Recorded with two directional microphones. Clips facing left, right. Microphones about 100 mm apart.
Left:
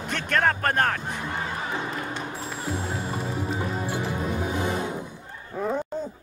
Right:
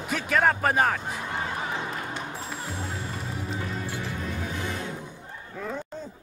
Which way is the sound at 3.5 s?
20° left (ahead or behind).